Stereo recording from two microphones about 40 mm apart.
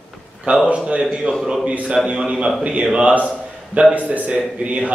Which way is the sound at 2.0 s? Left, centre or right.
Right.